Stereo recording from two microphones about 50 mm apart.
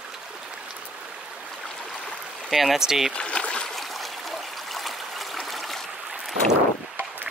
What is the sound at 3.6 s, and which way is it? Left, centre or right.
Stream, centre.